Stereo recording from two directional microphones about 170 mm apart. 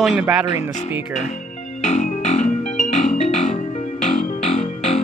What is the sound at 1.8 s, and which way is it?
Music, 40° left (ahead or behind).